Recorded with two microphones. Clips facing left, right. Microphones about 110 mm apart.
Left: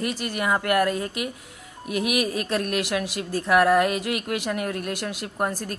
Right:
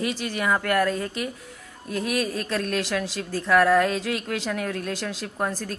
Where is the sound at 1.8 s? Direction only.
70° left (ahead or behind).